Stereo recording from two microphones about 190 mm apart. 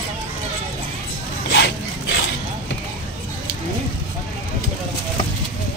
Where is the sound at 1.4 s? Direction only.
65° left (ahead or behind).